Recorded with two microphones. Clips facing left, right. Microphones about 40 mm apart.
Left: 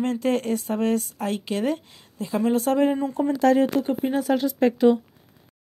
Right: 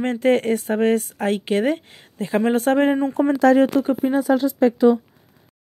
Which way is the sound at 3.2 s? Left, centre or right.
Right.